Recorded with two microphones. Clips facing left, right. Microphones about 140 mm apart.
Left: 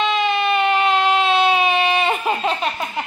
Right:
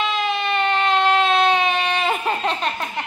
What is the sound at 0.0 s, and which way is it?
Baby cry, centre (ahead or behind).